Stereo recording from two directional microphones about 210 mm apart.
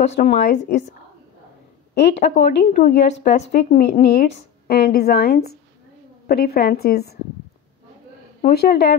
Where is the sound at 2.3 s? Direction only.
50° left (ahead or behind).